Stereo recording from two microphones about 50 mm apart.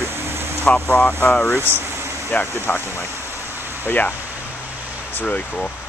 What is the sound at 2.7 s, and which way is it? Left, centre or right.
Speech, left.